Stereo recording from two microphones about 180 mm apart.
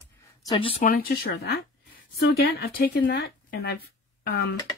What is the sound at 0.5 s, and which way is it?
Speech, 30° left (ahead or behind).